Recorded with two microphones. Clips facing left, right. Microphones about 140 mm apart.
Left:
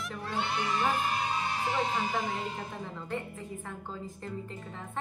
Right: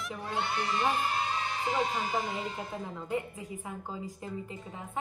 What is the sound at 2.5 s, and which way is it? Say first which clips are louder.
A woman's voice: right 1 dB; 5° right (ahead or behind).